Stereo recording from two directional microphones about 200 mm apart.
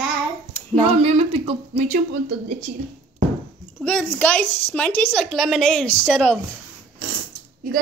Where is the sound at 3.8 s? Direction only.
5° left (ahead or behind).